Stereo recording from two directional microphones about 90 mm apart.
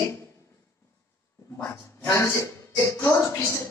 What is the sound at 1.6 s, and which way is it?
A man's voice, 30° left (ahead or behind).